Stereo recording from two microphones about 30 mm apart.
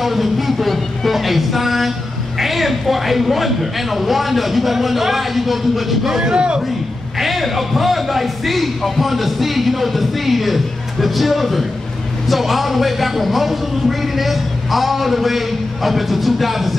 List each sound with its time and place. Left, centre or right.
0.0 s a sound: centre
2.3 s speech: centre
6.2 s speech: right
7.2 s speech: centre